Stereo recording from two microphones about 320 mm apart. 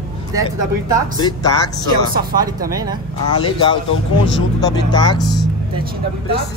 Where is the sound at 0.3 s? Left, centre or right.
Centre.